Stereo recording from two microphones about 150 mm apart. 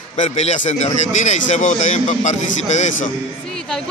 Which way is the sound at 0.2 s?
50° left (ahead or behind).